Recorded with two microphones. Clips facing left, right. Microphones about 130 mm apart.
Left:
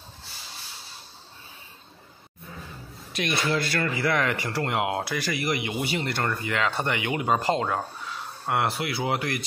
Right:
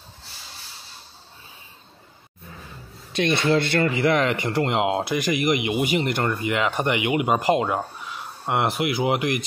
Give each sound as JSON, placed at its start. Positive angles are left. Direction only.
{"t": 3.1, "sound": "speech", "side_deg": -30}